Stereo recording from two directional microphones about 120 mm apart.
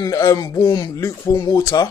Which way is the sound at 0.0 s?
30° left (ahead or behind).